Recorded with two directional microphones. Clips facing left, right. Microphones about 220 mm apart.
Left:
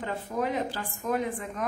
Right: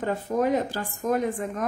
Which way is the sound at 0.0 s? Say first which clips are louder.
Right 6 dB; 45° right (ahead or behind).